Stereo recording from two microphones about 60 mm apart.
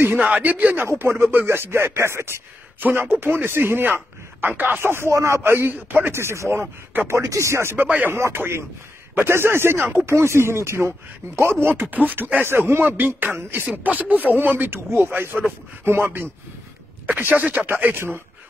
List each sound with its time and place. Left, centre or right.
0.2 s speech: right
0.8 s speech: right
2.8 s speech: right
5.1 s a man's voice: right
5.4 s speech: right
5.8 s speech: right
6.1 s speech: right
7.1 s speech: right
8.1 s speech: right
11.9 s speech: right
17.0 s speech: right